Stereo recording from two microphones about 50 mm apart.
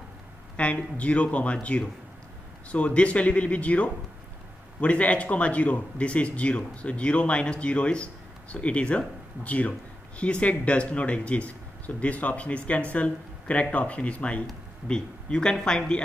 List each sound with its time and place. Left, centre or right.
0.6 s a man's voice: left